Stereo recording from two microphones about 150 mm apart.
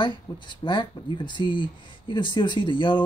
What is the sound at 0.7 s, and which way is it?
Speech, 30° left (ahead or behind).